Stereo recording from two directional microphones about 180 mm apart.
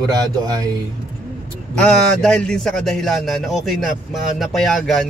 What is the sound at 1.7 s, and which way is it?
A man's voice, 5° left (ahead or behind).